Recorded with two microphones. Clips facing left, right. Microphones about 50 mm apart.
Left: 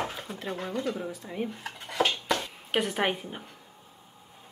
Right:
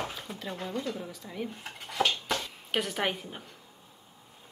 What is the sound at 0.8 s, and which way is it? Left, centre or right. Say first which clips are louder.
Speech: left 3 dB; centre.